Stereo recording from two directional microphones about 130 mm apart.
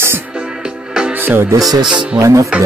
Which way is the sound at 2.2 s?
25° right (ahead or behind).